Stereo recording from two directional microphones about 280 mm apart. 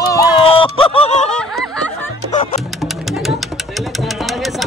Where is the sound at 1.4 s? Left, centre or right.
Centre.